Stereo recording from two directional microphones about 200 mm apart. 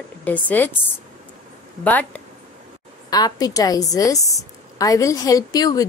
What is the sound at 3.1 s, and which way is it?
A woman's voice, 20° left (ahead or behind).